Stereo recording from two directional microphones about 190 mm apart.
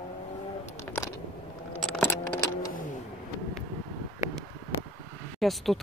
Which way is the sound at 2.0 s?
15° left (ahead or behind).